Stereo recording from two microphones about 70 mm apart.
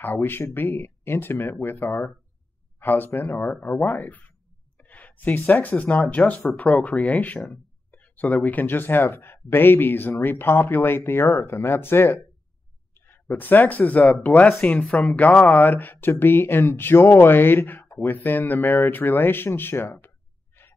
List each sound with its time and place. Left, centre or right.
0.0 s speech: left
20.5 s gasp: left